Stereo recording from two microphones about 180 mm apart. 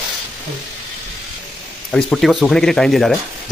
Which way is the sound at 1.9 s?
5° left (ahead or behind).